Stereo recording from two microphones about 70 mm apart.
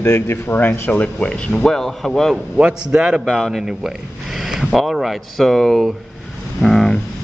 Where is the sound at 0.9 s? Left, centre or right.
Centre.